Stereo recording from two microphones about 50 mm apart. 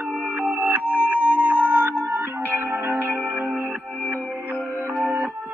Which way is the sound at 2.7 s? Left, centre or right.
Right.